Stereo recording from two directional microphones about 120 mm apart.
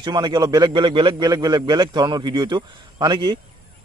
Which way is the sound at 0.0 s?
35° right (ahead or behind).